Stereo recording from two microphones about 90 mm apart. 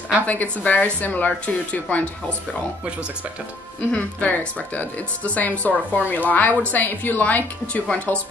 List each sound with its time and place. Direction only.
0.3 s speech: 15° left (ahead or behind)
3.9 s speech: 15° left (ahead or behind)